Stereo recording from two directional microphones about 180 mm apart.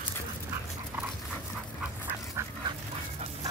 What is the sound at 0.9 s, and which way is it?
Dog, 10° right (ahead or behind).